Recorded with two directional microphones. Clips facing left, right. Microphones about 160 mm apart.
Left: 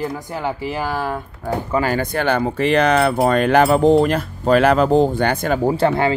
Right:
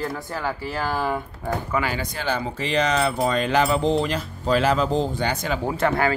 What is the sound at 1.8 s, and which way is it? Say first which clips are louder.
Speech: left 8 dB; 50° left (ahead or behind).